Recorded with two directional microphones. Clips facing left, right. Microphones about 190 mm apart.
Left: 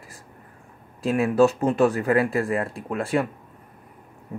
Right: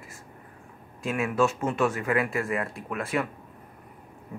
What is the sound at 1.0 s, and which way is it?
Speech, 35° left (ahead or behind).